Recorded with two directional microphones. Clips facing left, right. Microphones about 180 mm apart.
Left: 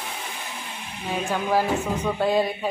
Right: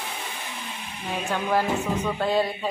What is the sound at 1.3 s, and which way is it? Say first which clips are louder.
Speech: left 1 dB; 10° left (ahead or behind).